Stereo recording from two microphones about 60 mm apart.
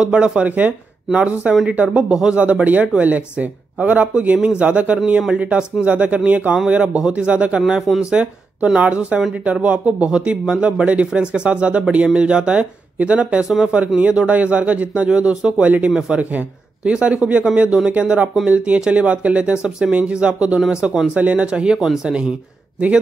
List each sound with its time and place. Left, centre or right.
0.0 s speech: centre
1.1 s speech: centre
7.6 s speech: centre
8.0 s speech: centre
21.2 s speech: right; by 22.1 s centre